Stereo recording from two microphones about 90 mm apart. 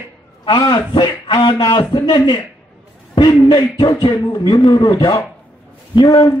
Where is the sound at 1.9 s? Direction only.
55° left (ahead or behind).